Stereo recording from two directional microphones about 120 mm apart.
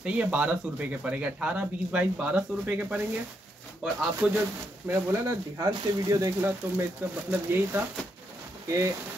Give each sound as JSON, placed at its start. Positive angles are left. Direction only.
{"t": 0.0, "sound": "speech", "side_deg": -10}
{"t": 4.8, "sound": "speech", "side_deg": -25}